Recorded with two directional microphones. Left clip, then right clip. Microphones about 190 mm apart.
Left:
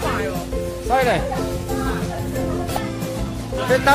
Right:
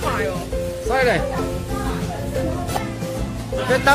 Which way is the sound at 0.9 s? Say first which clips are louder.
Left 1 dB; 5° left (ahead or behind).